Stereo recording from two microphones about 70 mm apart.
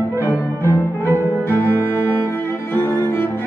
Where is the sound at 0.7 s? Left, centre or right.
Left.